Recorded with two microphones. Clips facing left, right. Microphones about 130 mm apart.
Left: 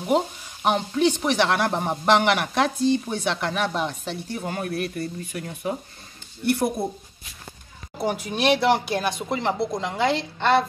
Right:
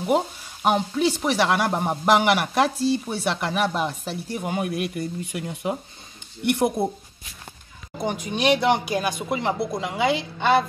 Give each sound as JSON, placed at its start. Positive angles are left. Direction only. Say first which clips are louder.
{"t": 0.0, "sound": "frying", "louder": "even", "side_deg": -5}
{"t": 6.4, "sound": "speech", "louder": "right 1 dB", "side_deg": -20}
{"t": 8.0, "sound": "speech", "louder": "even", "side_deg": 5}